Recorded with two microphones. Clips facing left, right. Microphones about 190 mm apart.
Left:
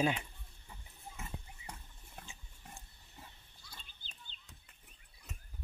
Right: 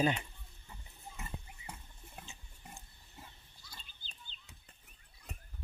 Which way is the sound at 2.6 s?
Centre (ahead or behind).